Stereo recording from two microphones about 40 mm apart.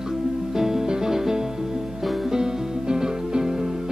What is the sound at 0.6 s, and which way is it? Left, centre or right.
Music, centre.